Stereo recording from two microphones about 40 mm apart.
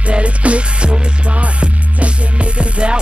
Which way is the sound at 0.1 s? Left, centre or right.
Right.